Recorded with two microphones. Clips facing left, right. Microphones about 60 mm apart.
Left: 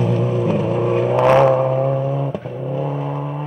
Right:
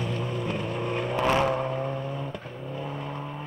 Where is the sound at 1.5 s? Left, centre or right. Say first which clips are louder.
Left 12 dB; centre.